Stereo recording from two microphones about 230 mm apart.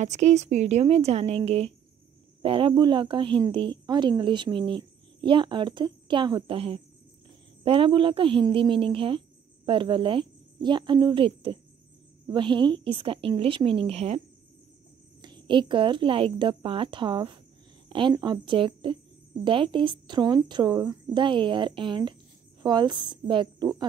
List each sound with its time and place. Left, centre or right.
0.0 s a woman's voice: right
15.2 s a woman's voice: centre